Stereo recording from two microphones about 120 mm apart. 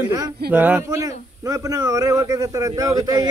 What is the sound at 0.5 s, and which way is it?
Speech, 15° right (ahead or behind).